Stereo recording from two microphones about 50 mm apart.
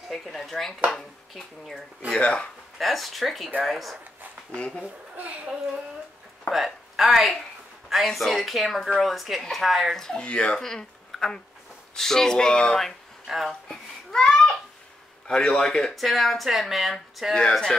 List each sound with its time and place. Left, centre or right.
0.1 s speech: centre
2.1 s speech: centre
2.8 s speech: centre
4.6 s speech: centre
5.1 s a child's voice: right
6.5 s speech: centre
9.9 s speech: centre
10.6 s speech: centre
12.8 s speech: centre
13.7 s babbling: centre
15.2 s speech: centre
15.9 s speech: centre
17.4 s speech: centre